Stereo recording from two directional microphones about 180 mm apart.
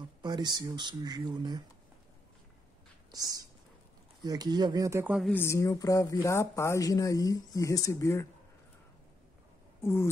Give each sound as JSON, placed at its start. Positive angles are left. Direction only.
{"t": 0.2, "sound": "speech", "side_deg": -25}
{"t": 3.1, "sound": "speech", "side_deg": -20}
{"t": 5.3, "sound": "speech", "side_deg": 15}
{"t": 9.8, "sound": "speech", "side_deg": 15}